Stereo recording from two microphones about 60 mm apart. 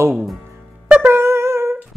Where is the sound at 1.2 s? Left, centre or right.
Right.